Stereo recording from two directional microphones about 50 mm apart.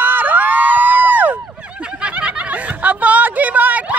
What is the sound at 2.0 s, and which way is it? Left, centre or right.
Snicker, right.